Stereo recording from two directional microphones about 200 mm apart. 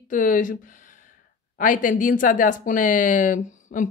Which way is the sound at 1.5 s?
40° left (ahead or behind).